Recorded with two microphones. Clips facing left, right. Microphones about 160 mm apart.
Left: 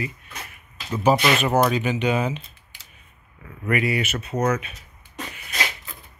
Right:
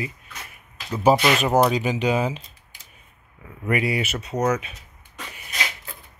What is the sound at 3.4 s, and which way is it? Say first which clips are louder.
Speech: even; 20° right (ahead or behind).